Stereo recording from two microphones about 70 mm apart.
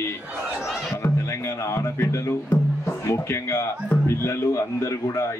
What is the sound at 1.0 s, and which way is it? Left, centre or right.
A man's voice, left.